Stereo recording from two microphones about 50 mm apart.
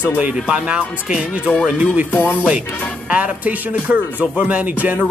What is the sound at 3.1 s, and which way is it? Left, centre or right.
Speech, right.